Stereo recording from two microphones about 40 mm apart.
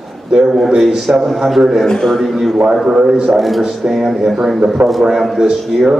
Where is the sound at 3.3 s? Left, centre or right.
Centre.